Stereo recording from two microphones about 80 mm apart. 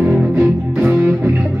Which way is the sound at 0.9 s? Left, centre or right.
Right.